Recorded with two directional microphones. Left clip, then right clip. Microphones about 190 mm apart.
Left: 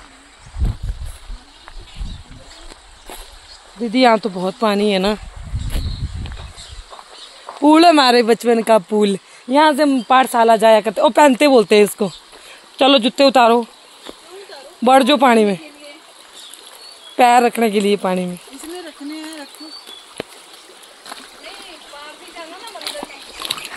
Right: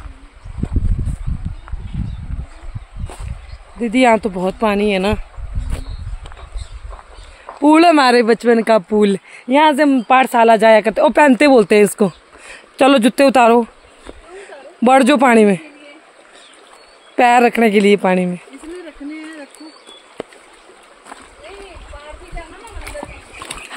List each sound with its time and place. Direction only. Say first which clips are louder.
3.8 s speech: right 1 dB; 10° right (ahead or behind)
4.6 s speech: even; centre (ahead or behind)
7.6 s speech: even; 10° right (ahead or behind); by 13.7 s 40° right (ahead or behind)
14.8 s speech: right 1 dB; 35° right (ahead or behind)
17.1 s speech: right 1 dB; 35° right (ahead or behind)